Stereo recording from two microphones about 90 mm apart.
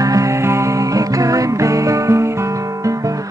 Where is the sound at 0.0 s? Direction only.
40° right (ahead or behind).